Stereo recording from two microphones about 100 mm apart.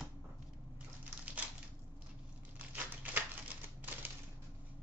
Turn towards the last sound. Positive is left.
turn(degrees=-20)  # may be behind; listen again after turning